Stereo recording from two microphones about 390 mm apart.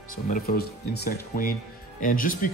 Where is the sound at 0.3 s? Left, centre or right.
Left.